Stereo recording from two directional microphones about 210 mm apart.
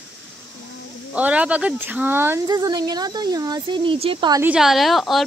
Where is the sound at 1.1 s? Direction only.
5° right (ahead or behind); by 4.4 s 25° right (ahead or behind).